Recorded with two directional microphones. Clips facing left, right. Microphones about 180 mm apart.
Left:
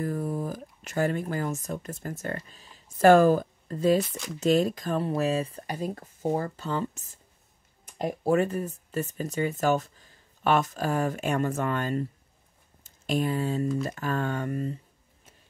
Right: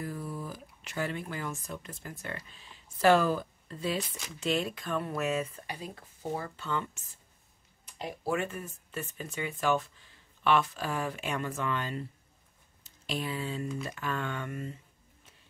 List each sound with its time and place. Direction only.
0.0 s speech: 45° left (ahead or behind)
7.8 s speech: 50° left (ahead or behind)